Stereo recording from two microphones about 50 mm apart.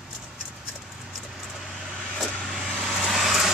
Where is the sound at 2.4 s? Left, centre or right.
Centre.